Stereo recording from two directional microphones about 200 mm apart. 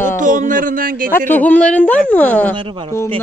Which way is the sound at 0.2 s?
40° right (ahead or behind).